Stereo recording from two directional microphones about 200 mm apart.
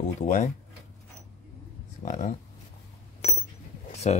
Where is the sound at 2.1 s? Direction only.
40° left (ahead or behind).